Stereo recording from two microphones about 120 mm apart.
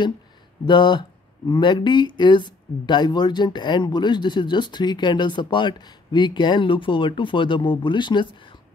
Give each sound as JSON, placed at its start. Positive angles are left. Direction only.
{"t": 0.7, "sound": "speech", "side_deg": 40}